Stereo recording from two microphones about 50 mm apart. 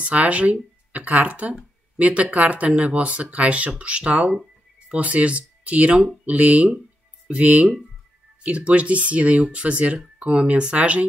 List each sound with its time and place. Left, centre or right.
0.0 s speech: right